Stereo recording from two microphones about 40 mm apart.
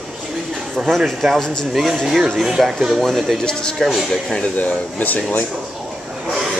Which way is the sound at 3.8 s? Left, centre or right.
Centre.